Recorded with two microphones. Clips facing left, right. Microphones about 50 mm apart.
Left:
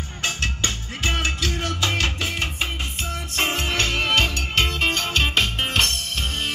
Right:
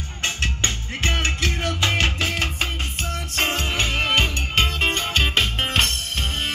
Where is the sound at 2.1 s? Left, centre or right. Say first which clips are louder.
Right 2 dB; right.